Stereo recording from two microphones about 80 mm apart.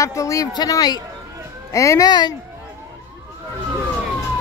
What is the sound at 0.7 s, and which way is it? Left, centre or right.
Speech, left.